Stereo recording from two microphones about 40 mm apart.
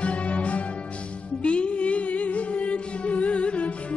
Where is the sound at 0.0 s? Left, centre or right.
Left.